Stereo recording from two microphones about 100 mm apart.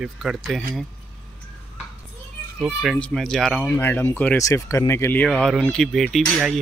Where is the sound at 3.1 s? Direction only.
5° left (ahead or behind).